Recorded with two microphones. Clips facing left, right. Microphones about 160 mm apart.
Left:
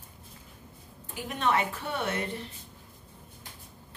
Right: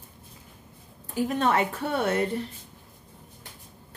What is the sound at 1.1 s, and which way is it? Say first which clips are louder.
A woman's voice: right 4 dB; 40° right (ahead or behind).